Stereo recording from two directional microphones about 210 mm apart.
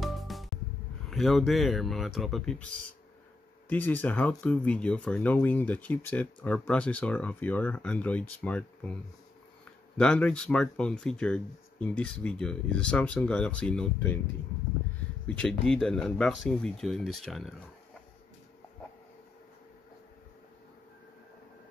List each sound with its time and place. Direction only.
0.0 s music: centre (ahead or behind)
1.1 s speech: centre (ahead or behind)
3.6 s speech: 10° left (ahead or behind)
9.9 s speech: 5° left (ahead or behind)
15.2 s speech: 5° left (ahead or behind)